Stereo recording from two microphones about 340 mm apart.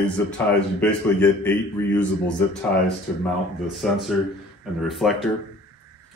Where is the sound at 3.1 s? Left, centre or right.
Centre.